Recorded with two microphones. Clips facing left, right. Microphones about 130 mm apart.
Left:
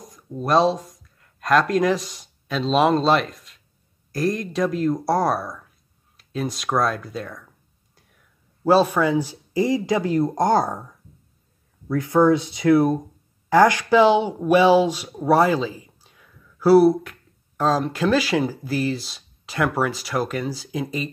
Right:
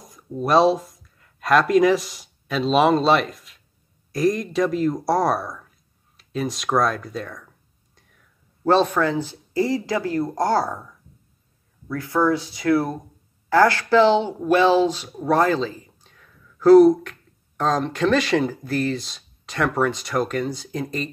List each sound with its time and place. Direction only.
0.0 s speech: centre (ahead or behind)
8.6 s speech: 10° left (ahead or behind)
11.9 s speech: 20° left (ahead or behind); by 21.1 s 5° left (ahead or behind)